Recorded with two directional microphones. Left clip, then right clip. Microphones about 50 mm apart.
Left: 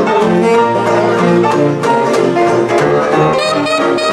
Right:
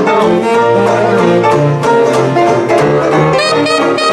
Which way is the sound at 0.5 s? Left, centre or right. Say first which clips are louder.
Right 1 dB; centre.